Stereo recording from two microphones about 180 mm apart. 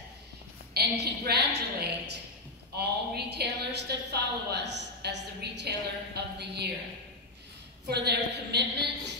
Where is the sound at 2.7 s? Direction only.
65° right (ahead or behind).